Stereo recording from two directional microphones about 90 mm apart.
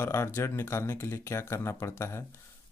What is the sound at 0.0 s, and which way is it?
Speech, 25° left (ahead or behind).